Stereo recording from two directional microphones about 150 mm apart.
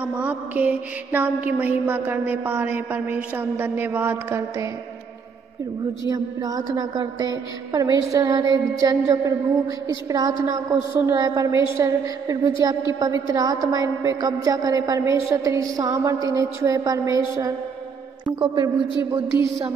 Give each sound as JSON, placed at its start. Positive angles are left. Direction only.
{"t": 0.0, "sound": "mantra", "side_deg": -10}
{"t": 6.0, "sound": "a woman's voice", "side_deg": -25}